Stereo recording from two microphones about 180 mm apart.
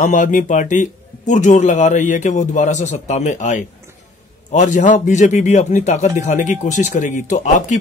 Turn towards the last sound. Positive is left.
turn(degrees=45)  # may be behind; listen again after turning